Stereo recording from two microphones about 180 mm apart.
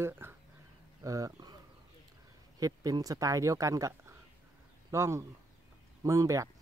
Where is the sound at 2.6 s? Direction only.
20° right (ahead or behind).